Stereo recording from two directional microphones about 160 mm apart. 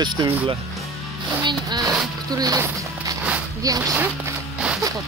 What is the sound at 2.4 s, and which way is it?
Speech, 25° right (ahead or behind).